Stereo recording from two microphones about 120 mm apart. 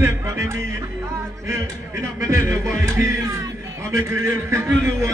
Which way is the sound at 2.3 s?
25° right (ahead or behind).